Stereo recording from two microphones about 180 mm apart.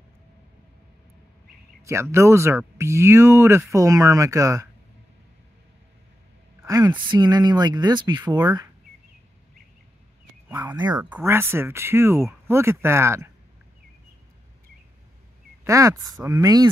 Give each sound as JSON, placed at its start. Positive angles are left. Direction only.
{"t": 1.9, "sound": "speech", "side_deg": -15}
{"t": 6.6, "sound": "speech", "side_deg": -20}
{"t": 10.5, "sound": "speech", "side_deg": -10}
{"t": 15.6, "sound": "speech", "side_deg": -15}